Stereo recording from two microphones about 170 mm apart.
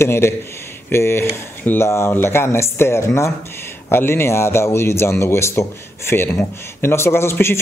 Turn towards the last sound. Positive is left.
turn(degrees=15)  # may be behind; listen again after turning